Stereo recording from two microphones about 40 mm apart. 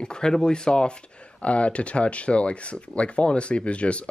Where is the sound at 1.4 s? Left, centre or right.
Left.